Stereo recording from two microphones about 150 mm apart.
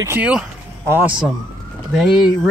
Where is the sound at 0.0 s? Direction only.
15° right (ahead or behind).